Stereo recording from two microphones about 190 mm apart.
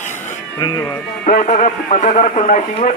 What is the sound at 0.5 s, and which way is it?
Speech, 20° left (ahead or behind).